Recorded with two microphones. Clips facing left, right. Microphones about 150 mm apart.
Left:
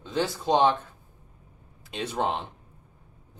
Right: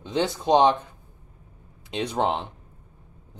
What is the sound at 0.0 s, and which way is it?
Speech, 20° right (ahead or behind).